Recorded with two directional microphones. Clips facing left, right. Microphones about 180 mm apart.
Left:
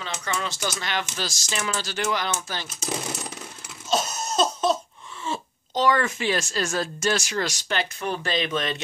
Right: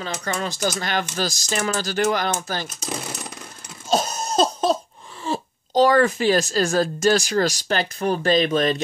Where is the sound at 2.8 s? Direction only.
5° left (ahead or behind).